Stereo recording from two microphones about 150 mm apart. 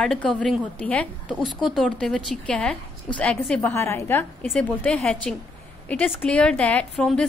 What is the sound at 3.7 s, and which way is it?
A woman's voice, 20° left (ahead or behind).